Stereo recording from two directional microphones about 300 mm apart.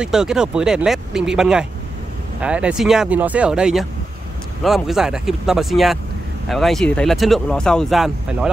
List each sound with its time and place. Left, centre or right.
0.0 s speech: centre